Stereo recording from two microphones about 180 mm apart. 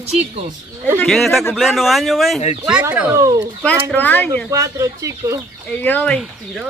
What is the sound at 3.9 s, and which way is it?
Speech, 10° left (ahead or behind).